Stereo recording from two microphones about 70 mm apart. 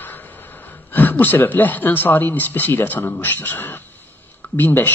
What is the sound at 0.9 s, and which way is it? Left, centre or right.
Speech, left.